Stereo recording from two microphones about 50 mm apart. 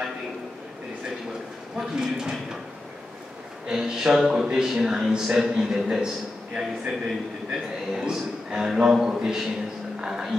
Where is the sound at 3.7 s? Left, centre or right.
Centre.